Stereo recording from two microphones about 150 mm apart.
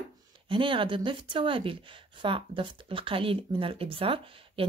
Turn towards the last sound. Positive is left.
turn(degrees=-35)  # may be behind; listen again after turning